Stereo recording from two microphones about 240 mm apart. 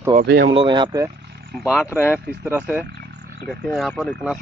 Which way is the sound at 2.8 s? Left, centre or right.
Right.